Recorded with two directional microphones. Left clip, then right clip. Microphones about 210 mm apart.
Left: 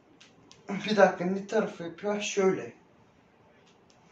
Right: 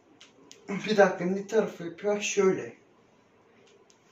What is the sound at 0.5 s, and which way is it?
Speech, 20° right (ahead or behind).